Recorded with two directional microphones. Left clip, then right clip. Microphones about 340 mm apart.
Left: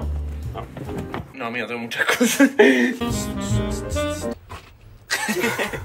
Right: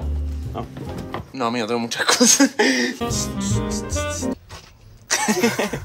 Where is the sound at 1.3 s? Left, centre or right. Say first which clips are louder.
Right 6 dB; centre.